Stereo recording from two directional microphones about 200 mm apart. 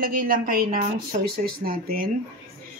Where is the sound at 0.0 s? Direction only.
45° right (ahead or behind).